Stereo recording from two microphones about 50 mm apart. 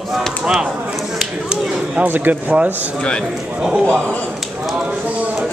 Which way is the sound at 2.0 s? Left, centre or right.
Right.